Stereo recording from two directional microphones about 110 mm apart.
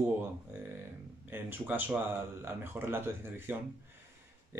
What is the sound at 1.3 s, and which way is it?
Speech, 15° right (ahead or behind).